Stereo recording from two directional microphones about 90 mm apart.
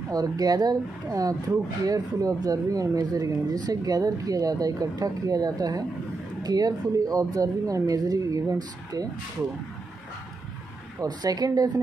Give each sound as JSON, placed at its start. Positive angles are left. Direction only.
{"t": 0.1, "sound": "speech", "side_deg": -45}
{"t": 11.0, "sound": "speech", "side_deg": -45}